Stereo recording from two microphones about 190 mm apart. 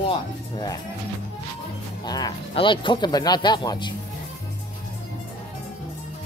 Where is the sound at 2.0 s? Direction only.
20° left (ahead or behind).